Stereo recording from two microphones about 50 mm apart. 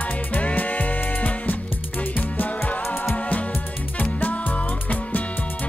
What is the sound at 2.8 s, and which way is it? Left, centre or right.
Music, left.